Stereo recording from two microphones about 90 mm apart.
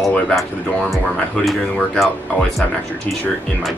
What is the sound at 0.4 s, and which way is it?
Speech, centre (ahead or behind).